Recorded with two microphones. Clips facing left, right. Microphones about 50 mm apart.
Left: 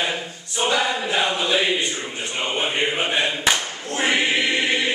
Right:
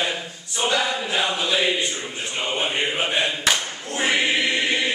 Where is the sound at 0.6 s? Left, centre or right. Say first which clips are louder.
Left 1 dB; centre.